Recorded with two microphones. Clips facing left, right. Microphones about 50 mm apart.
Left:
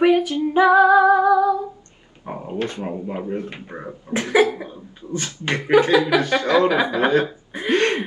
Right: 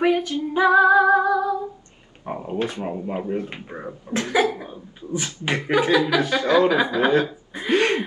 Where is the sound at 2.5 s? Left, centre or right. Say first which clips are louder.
Even; centre.